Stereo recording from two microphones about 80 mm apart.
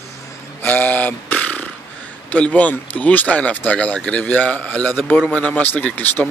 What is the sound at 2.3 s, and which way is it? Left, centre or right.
Speech, centre.